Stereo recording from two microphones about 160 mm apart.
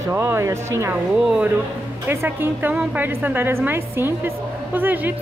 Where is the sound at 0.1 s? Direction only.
15° right (ahead or behind).